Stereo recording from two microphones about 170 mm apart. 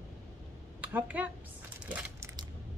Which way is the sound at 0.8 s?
10° right (ahead or behind).